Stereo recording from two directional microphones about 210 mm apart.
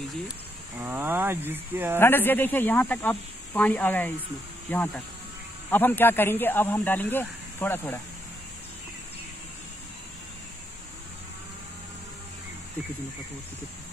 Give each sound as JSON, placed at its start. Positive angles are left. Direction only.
{"t": 0.7, "sound": "cricket", "side_deg": -10}
{"t": 2.0, "sound": "speech", "side_deg": 10}